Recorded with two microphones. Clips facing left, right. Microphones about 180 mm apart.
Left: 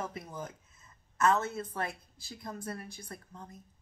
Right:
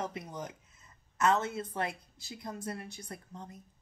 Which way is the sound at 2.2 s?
25° right (ahead or behind).